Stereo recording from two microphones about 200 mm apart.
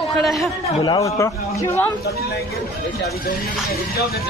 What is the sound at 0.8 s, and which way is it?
Speech, 15° left (ahead or behind).